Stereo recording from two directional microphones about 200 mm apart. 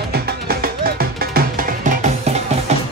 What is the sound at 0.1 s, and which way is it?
Music, 50° right (ahead or behind).